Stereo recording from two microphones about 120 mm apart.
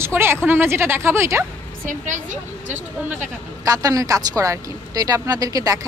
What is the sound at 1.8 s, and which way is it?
Speech, 90° right.